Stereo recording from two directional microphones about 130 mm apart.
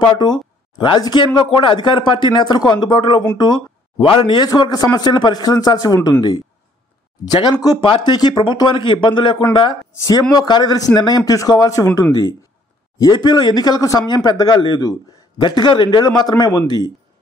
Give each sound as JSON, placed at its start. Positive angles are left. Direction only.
{"t": 0.1, "sound": "speech", "side_deg": 35}
{"t": 7.2, "sound": "speech", "side_deg": 35}